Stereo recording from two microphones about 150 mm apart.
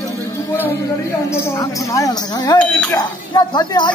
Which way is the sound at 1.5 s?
20° left (ahead or behind).